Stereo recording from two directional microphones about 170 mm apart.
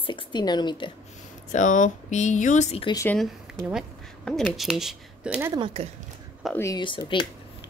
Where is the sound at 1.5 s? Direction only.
50° left (ahead or behind).